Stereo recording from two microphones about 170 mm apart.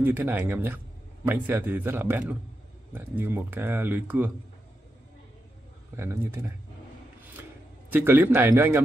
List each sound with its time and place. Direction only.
0.0 s speech: 10° right (ahead or behind)
5.9 s speech: 15° right (ahead or behind)
7.9 s speech: 10° right (ahead or behind)